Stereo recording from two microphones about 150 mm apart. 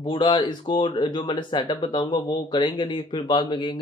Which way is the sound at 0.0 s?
30° left (ahead or behind).